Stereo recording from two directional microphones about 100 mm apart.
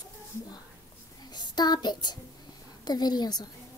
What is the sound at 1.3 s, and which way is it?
Child singing, 45° left (ahead or behind).